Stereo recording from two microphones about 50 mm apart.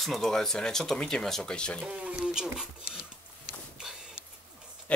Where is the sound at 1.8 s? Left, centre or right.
Right.